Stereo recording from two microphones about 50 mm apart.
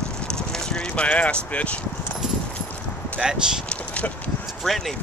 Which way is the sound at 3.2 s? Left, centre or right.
Centre.